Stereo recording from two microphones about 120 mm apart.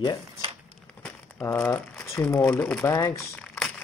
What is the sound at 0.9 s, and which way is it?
Crumpling, 5° left (ahead or behind).